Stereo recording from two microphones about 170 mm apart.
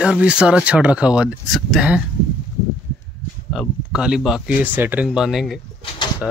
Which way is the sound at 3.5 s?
Centre (ahead or behind).